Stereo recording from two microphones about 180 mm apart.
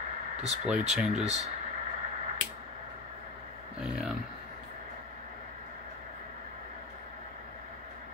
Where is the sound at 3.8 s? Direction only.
Centre (ahead or behind).